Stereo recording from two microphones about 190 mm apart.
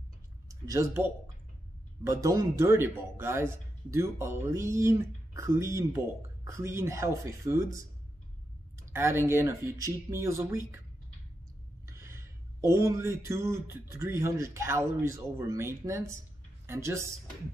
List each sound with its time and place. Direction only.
0.5 s speech: 15° right (ahead or behind)
8.9 s speech: 15° right (ahead or behind)
11.8 s a sound: 15° right (ahead or behind)
16.6 s speech: 15° right (ahead or behind)